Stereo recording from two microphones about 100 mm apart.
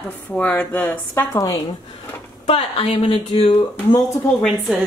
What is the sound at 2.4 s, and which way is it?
Speech, 80° left.